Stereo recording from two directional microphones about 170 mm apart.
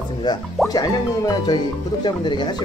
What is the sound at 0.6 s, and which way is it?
Speech, centre (ahead or behind).